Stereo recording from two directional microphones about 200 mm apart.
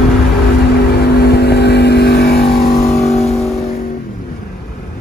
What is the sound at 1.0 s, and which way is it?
Vehicle, 55° left (ahead or behind).